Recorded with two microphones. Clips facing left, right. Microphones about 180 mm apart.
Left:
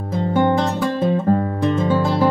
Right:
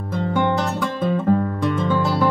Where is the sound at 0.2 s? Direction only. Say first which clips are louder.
Left 4 dB; 35° left (ahead or behind).